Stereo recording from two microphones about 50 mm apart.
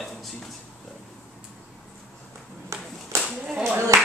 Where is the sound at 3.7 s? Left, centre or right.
Right.